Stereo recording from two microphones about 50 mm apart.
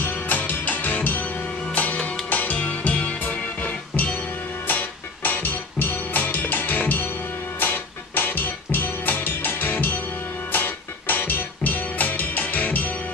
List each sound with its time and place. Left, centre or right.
0.0 s music: left